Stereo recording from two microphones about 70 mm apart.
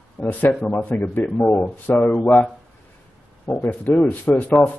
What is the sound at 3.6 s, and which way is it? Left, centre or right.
Speech, left.